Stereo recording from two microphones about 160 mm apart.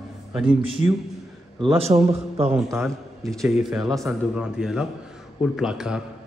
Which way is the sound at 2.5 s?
Centre (ahead or behind).